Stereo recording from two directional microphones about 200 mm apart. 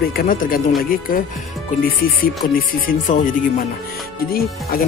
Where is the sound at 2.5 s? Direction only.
45° left (ahead or behind).